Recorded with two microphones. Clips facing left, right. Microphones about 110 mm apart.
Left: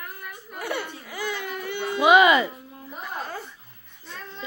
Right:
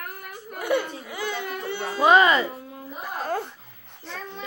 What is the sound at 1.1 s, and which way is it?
Baby cry, 25° right (ahead or behind).